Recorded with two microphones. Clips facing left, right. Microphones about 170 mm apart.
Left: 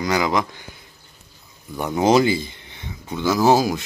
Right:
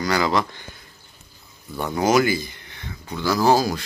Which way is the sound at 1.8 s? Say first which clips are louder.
Left 2 dB; 20° left (ahead or behind).